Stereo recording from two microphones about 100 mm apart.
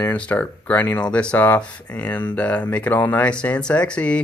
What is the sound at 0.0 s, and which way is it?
Speech, 15° left (ahead or behind).